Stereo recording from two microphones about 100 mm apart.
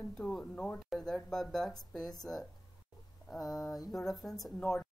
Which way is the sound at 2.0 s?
40° left (ahead or behind).